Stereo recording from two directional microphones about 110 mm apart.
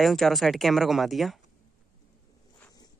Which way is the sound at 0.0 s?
Centre (ahead or behind).